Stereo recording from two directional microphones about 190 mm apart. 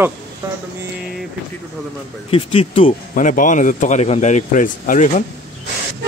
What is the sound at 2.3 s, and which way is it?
Speech, 30° left (ahead or behind).